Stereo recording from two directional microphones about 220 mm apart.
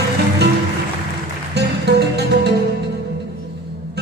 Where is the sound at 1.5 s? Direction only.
50° right (ahead or behind).